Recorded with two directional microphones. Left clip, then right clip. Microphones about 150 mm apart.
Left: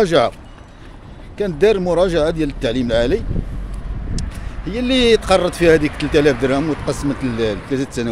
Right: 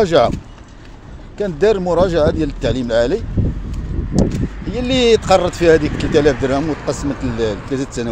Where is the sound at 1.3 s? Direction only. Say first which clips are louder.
Even; 15° left (ahead or behind).